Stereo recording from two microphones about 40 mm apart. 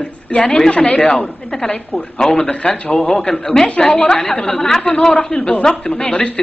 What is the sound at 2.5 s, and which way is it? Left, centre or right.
Speech, left.